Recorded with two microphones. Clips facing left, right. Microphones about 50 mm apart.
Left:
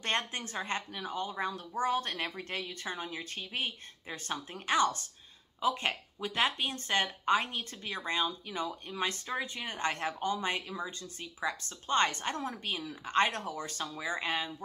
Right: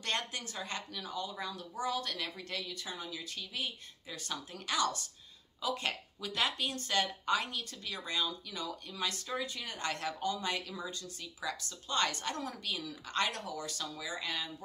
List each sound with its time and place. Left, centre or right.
0.0 s speech: left